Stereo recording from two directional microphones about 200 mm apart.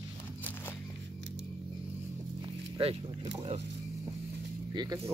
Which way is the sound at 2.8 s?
30° right (ahead or behind).